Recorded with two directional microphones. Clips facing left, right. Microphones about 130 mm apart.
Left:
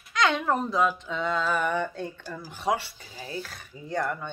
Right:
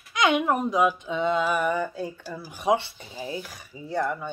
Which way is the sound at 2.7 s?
25° right (ahead or behind).